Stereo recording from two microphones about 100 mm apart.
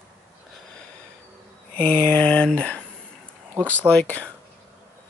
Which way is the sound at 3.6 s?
30° right (ahead or behind).